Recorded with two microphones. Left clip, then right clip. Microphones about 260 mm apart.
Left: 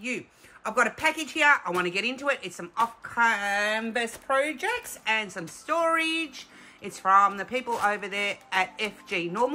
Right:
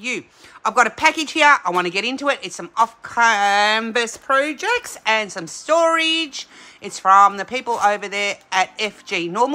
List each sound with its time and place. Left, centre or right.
0.7 s speech: centre